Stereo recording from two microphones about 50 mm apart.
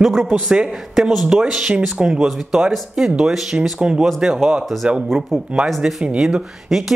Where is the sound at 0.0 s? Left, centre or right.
Centre.